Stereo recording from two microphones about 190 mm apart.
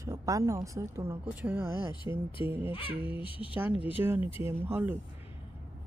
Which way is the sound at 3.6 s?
10° right (ahead or behind).